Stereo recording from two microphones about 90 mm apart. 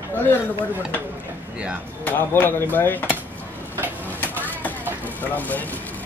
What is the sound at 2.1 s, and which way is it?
Speech, 20° left (ahead or behind).